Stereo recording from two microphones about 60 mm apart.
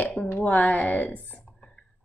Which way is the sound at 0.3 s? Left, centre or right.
Left.